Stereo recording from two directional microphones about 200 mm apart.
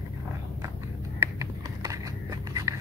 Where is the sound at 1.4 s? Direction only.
15° right (ahead or behind).